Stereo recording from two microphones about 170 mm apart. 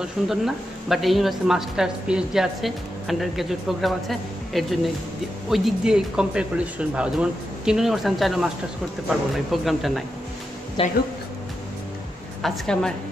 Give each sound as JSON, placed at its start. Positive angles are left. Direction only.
{"t": 0.0, "sound": "speech", "side_deg": 0}
{"t": 9.5, "sound": "speech", "side_deg": 0}
{"t": 10.8, "sound": "speech", "side_deg": 30}
{"t": 12.4, "sound": "a woman's voice", "side_deg": 0}